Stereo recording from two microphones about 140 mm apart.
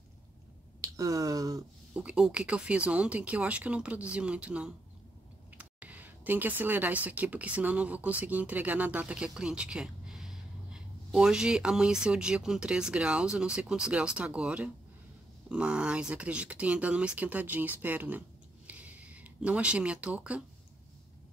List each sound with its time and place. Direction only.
0.7 s speech: 25° right (ahead or behind)
2.0 s speech: 5° right (ahead or behind)
18.7 s a sound: 10° right (ahead or behind)